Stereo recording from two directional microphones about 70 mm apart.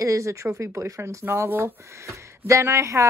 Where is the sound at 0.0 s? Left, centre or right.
Right.